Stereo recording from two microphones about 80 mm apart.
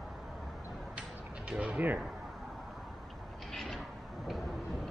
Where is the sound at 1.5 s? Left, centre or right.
Centre.